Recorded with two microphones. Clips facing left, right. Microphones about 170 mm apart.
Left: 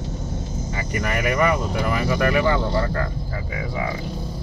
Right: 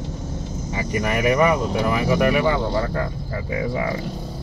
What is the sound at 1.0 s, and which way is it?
Speech, 20° right (ahead or behind).